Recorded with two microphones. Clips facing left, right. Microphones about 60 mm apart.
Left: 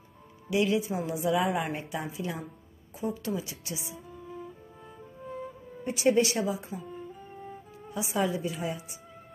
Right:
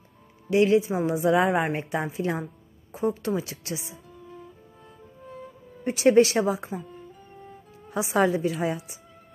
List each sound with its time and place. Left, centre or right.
0.5 s a woman's voice: right
1.6 s a woman's voice: right
4.1 s music: centre
5.9 s a woman's voice: right
6.8 s music: centre
7.9 s a woman's voice: right